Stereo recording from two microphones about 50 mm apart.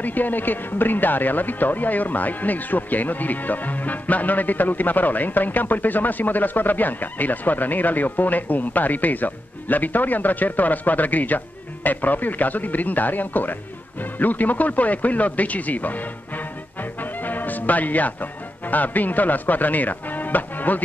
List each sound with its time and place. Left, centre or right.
0.0 s speech: left
17.0 s speech: left